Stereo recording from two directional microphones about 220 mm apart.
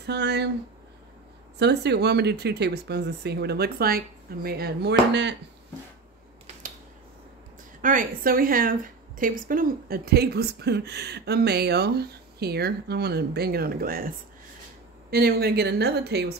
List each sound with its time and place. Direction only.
0.0 s a woman's voice: 50° right (ahead or behind)
1.6 s a woman's voice: 50° right (ahead or behind)
7.8 s a woman's voice: 40° right (ahead or behind)